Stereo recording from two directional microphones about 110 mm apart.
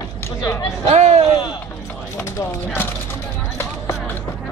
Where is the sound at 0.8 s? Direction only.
90° right.